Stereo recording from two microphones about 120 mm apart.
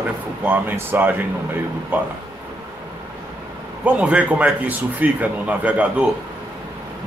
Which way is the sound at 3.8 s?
10° right (ahead or behind).